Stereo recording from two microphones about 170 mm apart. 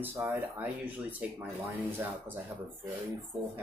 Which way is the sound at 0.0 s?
10° right (ahead or behind).